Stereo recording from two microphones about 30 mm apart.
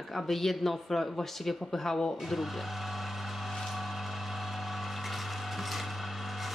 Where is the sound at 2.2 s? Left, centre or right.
Centre.